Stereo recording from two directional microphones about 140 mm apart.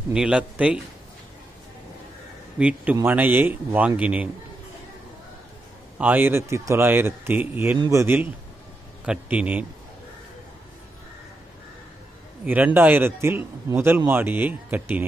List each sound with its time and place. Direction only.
0.1 s speech: 5° right (ahead or behind)
2.6 s speech: 10° right (ahead or behind)
5.9 s speech: 10° right (ahead or behind)
12.4 s speech: 10° right (ahead or behind)